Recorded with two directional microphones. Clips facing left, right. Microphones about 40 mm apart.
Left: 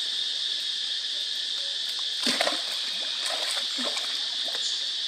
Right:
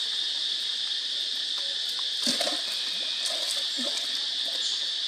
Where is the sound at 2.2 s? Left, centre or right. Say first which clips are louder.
Left 4 dB; left.